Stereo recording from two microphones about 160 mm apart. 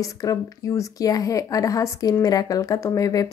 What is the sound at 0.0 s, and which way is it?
Speech, 20° left (ahead or behind).